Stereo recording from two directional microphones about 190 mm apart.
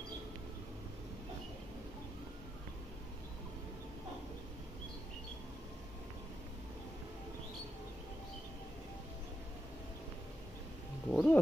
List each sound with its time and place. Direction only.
11.1 s wild animals: 5° left (ahead or behind)